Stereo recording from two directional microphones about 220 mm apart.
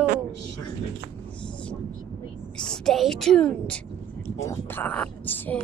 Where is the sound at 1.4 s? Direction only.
5° left (ahead or behind).